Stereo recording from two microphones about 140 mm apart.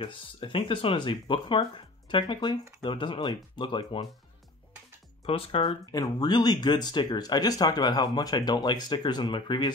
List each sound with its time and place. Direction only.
0.0 s speech: 40° left (ahead or behind)
5.2 s speech: 40° left (ahead or behind)
5.9 s speech: 25° left (ahead or behind)